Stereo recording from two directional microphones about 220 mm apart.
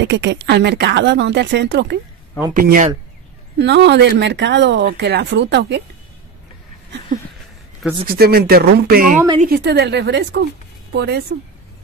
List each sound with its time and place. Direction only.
0.0 s speech: 50° right (ahead or behind)
2.5 s speech: 40° right (ahead or behind)
3.5 s speech: 50° right (ahead or behind)
8.2 s speech: 45° right (ahead or behind)